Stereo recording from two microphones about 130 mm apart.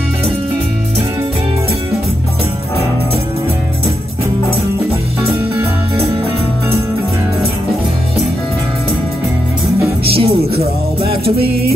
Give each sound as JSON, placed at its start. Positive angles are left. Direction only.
{"t": 10.1, "sound": "music", "side_deg": -50}